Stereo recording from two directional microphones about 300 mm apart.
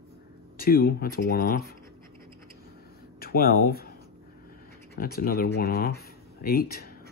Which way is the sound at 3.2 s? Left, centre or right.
Left.